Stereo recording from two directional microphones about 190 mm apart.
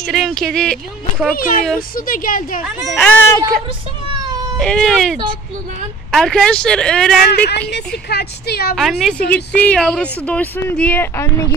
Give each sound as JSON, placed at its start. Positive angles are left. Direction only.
{"t": 0.0, "sound": "speech", "side_deg": 0}
{"t": 1.3, "sound": "a woman's voice", "side_deg": 45}
{"t": 3.0, "sound": "speech", "side_deg": 10}
{"t": 4.6, "sound": "speech", "side_deg": 5}
{"t": 6.1, "sound": "speech", "side_deg": 5}
{"t": 7.2, "sound": "speech", "side_deg": 55}
{"t": 8.7, "sound": "speech", "side_deg": 0}